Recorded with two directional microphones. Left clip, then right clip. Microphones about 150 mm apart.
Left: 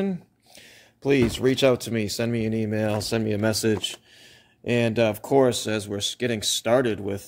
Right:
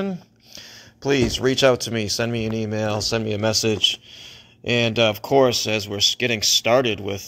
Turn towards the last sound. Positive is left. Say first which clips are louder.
# right 3 dB
turn(degrees=25)  # may be behind; listen again after turning